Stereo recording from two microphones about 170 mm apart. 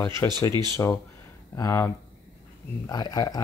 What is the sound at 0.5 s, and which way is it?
Speech, 25° right (ahead or behind).